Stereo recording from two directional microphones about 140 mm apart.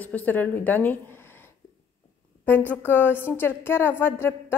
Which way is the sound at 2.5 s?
15° left (ahead or behind).